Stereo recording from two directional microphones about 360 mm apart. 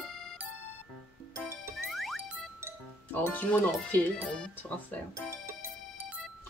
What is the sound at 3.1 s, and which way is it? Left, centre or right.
Speech, centre.